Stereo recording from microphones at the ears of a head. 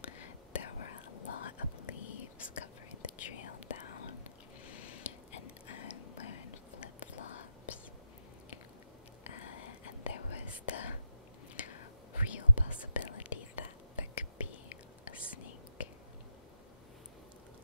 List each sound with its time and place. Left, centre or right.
0.0 s whispering: left
9.3 s whispering: left